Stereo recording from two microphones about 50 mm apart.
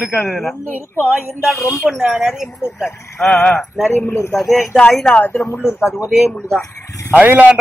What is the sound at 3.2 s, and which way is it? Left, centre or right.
Speech, centre.